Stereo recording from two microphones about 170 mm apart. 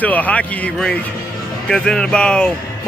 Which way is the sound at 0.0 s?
10° left (ahead or behind).